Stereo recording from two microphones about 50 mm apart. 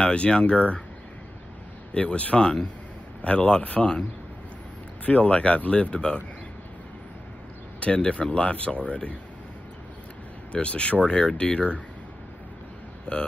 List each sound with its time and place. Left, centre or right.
0.0 s speech: left
2.0 s speech: left
5.0 s speech: left
7.8 s speech: left
10.5 s speech: left
13.1 s speech: left